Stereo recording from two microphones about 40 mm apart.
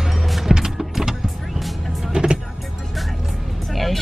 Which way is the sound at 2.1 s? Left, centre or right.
Right.